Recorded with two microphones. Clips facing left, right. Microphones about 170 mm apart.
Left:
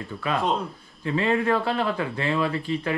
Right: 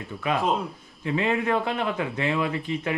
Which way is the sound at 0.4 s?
Centre (ahead or behind).